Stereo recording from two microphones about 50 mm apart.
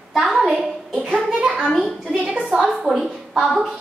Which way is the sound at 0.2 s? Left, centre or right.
Centre.